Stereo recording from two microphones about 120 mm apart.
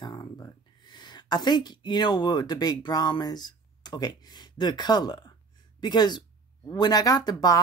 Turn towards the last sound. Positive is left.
turn(degrees=35)  # may be behind; listen again after turning